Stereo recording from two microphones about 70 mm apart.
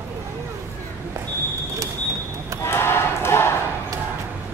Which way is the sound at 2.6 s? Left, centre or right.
Left.